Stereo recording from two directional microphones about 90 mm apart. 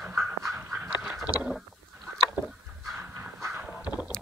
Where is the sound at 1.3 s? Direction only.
15° right (ahead or behind).